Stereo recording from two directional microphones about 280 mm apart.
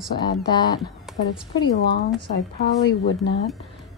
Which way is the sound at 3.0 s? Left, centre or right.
Left.